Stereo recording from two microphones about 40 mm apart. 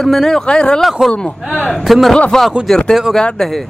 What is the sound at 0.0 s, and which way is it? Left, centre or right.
Speech, centre.